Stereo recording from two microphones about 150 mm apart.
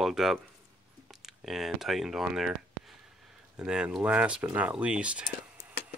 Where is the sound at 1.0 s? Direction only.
Centre (ahead or behind).